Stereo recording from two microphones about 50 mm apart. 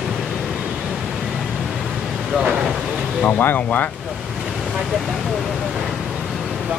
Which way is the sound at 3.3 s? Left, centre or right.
Left.